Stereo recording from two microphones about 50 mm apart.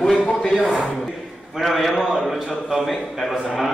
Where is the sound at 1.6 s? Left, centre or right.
Centre.